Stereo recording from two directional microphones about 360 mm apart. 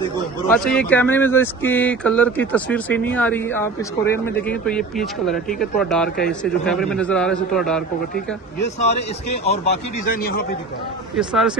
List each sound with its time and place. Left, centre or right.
0.5 s speech: centre
10.0 s a man's voice: left
11.1 s speech: centre